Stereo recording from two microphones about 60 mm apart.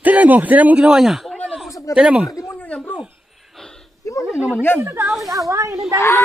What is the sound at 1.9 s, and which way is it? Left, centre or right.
Speech, centre.